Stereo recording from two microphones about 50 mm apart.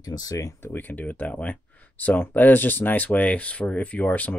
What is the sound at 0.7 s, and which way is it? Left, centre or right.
Speech, left.